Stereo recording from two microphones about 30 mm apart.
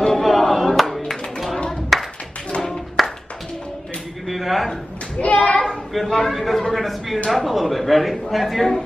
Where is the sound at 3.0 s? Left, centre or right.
Centre.